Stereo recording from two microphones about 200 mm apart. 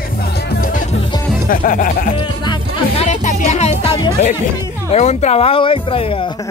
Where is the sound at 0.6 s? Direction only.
40° left (ahead or behind).